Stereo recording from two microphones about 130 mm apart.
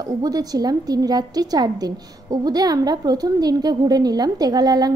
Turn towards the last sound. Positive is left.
turn(degrees=-30)  # may be behind; listen again after turning